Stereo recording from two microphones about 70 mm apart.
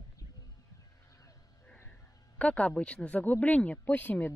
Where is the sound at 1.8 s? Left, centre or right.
Centre.